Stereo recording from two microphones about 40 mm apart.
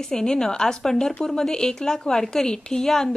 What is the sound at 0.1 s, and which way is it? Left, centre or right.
Speech, centre.